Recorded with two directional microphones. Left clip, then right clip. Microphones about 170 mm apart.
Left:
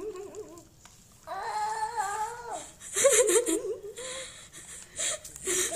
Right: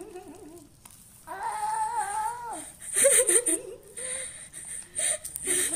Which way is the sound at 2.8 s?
5° left (ahead or behind).